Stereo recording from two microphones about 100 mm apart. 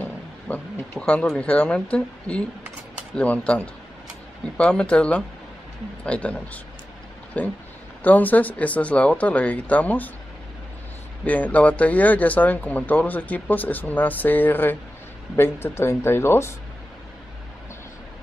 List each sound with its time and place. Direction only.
0.5 s speech: 15° left (ahead or behind)
11.2 s speech: 15° left (ahead or behind)